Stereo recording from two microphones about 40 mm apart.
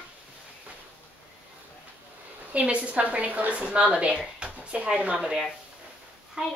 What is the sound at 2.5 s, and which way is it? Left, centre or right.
A woman's voice, right.